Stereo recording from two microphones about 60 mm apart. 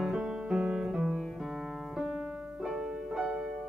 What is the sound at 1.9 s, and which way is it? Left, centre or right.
Keyboard, centre.